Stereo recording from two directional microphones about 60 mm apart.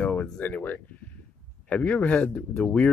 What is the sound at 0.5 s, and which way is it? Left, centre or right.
Speech, left.